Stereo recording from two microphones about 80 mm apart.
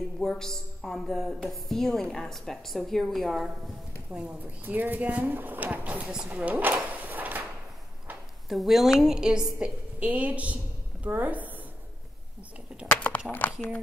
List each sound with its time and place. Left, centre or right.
0.2 s a man's voice: centre
4.1 s speech: centre
6.5 s drawer open or close: right
8.5 s a woman's voice: centre; by 11.6 s right
13.4 s speech: left